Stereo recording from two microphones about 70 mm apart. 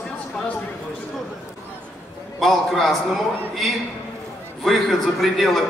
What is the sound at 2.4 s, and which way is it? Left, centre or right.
A man's voice, centre.